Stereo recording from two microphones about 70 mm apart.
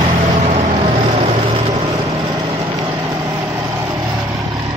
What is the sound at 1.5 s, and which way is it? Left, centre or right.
Vehicle, right.